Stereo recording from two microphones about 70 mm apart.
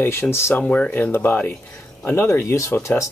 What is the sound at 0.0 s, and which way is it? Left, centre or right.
Speech, left.